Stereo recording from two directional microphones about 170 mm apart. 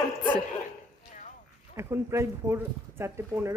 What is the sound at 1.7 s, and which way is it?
Speech, 15° right (ahead or behind).